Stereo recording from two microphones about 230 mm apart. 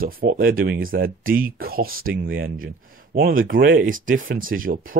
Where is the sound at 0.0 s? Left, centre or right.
Right.